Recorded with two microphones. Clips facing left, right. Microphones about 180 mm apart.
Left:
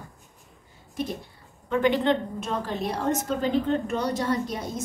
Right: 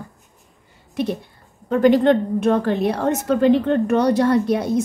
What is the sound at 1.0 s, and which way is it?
Speech, 70° right (ahead or behind).